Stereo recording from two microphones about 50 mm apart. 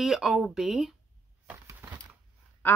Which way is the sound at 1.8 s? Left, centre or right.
Right.